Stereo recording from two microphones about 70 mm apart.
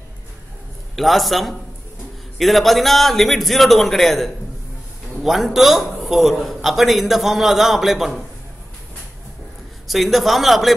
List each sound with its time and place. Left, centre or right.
0.9 s a man's voice: centre
9.8 s a man's voice: centre